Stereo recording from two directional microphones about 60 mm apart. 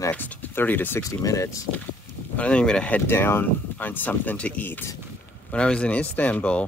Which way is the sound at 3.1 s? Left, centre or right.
Left.